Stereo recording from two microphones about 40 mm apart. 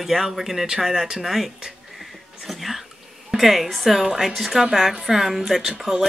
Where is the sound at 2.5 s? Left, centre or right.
Centre.